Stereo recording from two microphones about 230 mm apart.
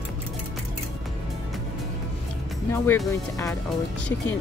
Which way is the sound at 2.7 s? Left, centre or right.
Centre.